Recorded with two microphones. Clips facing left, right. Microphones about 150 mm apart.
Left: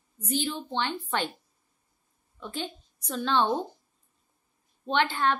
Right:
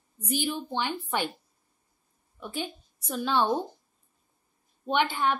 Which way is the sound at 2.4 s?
10° right (ahead or behind).